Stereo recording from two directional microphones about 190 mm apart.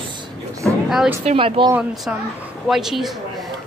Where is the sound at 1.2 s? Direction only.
35° right (ahead or behind).